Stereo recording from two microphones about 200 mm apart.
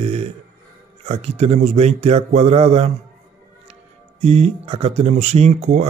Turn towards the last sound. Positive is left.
turn(degrees=-35)  # may be behind; listen again after turning